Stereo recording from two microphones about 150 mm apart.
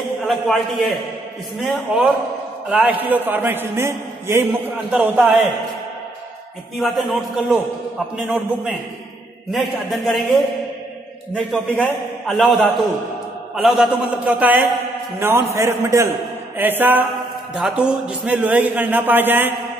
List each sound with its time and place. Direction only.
0.3 s a man's voice: centre (ahead or behind)
6.8 s a man's voice: centre (ahead or behind)
11.5 s a man's voice: 10° left (ahead or behind)
12.3 s a man's voice: centre (ahead or behind)